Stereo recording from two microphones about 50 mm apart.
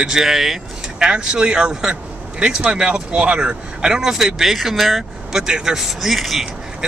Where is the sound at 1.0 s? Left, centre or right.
Centre.